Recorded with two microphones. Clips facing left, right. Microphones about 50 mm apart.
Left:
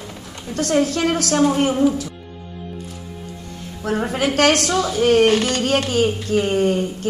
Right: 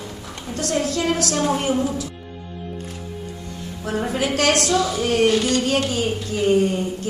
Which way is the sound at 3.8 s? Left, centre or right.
Left.